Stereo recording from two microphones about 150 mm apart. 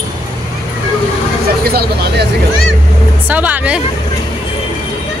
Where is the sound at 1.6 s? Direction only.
90° right.